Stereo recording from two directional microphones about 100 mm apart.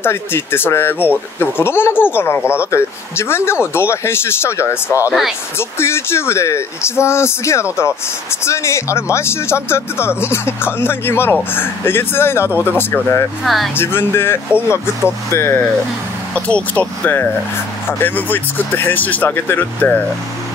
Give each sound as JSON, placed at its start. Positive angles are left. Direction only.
{"t": 0.0, "sound": "speech", "side_deg": 25}
{"t": 13.4, "sound": "speech", "side_deg": 0}
{"t": 13.7, "sound": "speech", "side_deg": 25}
{"t": 16.3, "sound": "speech", "side_deg": 10}